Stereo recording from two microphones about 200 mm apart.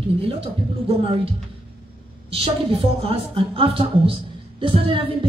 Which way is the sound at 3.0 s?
30° right (ahead or behind).